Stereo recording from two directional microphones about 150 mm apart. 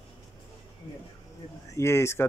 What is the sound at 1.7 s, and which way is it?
Speech, 20° left (ahead or behind).